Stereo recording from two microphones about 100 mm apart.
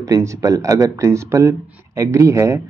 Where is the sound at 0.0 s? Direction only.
30° right (ahead or behind).